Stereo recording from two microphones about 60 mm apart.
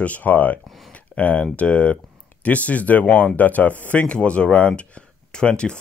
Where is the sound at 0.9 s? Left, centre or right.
Left.